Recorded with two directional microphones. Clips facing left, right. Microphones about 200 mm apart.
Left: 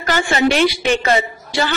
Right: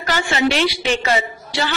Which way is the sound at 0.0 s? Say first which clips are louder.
Left 3 dB; 50° left (ahead or behind).